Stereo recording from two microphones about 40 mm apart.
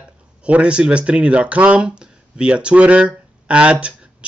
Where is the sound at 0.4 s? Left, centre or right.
Right.